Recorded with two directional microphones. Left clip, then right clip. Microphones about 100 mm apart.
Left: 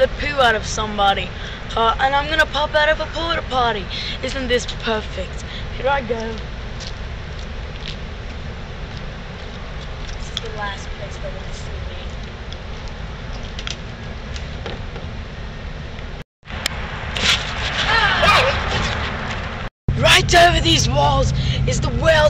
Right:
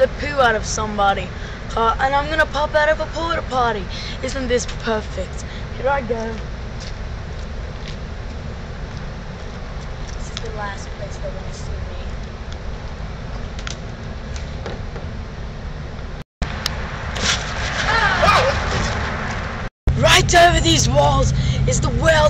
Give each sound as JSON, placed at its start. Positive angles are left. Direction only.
{"t": 0.0, "sound": "speech", "side_deg": 0}
{"t": 17.1, "sound": "a sound", "side_deg": 0}
{"t": 20.0, "sound": "speech", "side_deg": 0}